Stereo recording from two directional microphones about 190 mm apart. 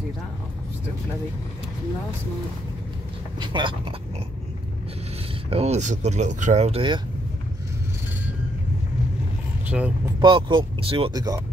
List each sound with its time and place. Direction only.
3.3 s speech: 25° right (ahead or behind)
5.5 s speech: 35° right (ahead or behind)
9.7 s speech: 5° right (ahead or behind)
10.2 s speech: 25° right (ahead or behind)